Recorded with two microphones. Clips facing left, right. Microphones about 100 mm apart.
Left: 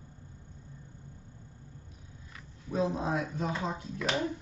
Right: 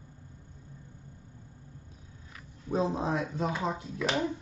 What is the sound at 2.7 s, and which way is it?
Speech, 35° right (ahead or behind).